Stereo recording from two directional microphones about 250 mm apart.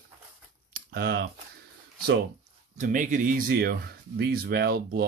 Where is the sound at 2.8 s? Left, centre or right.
Right.